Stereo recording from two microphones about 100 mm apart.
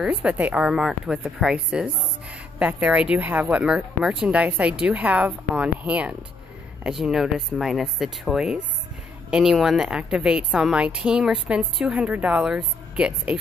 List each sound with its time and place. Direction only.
0.0 s a woman's voice: 15° right (ahead or behind)